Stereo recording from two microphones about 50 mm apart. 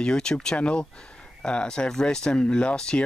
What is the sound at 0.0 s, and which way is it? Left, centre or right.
Speech, centre.